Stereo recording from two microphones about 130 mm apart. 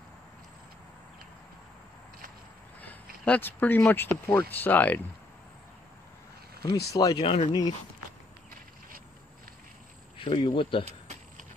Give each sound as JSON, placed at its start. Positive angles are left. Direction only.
{"t": 2.8, "sound": "speech", "side_deg": 15}
{"t": 6.6, "sound": "speech", "side_deg": 25}
{"t": 7.2, "sound": "speech", "side_deg": 50}
{"t": 10.1, "sound": "speech", "side_deg": 40}
{"t": 10.9, "sound": "insect", "side_deg": -60}